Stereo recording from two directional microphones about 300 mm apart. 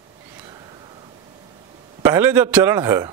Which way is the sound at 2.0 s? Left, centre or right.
Centre.